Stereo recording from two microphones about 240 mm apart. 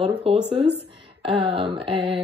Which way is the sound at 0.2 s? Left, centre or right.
Right.